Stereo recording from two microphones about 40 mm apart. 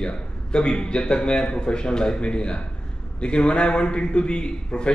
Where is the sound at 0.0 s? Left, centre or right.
Left.